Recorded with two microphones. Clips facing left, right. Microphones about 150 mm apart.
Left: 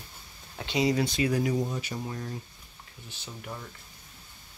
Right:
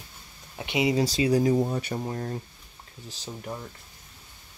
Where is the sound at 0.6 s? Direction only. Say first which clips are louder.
Right 2 dB; 20° right (ahead or behind).